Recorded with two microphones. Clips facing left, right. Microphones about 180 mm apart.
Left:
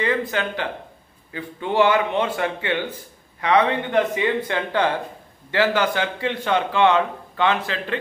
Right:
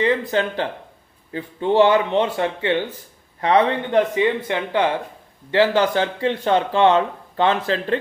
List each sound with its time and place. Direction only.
0.0 s speech: 30° right (ahead or behind)